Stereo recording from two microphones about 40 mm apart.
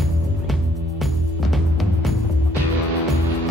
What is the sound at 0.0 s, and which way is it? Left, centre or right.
Music, centre.